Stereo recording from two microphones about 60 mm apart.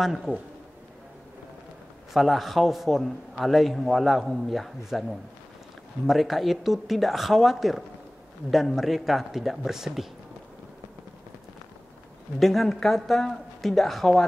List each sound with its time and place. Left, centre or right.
0.0 s a man's voice: centre
2.1 s a man's voice: centre
6.0 s a man's voice: centre
12.4 s a man's voice: centre